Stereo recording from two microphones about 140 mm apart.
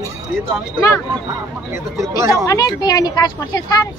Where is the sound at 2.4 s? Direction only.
25° left (ahead or behind).